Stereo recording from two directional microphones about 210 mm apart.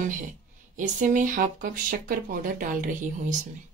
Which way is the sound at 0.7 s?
35° right (ahead or behind).